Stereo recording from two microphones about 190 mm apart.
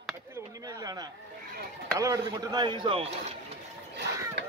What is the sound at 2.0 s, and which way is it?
Speech, 15° right (ahead or behind).